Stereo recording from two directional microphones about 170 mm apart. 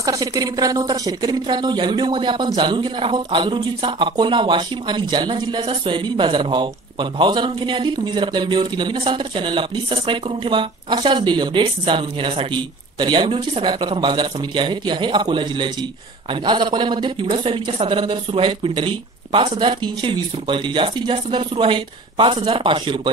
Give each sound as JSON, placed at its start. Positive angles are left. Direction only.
{"t": 0.0, "sound": "a woman's voice", "side_deg": -20}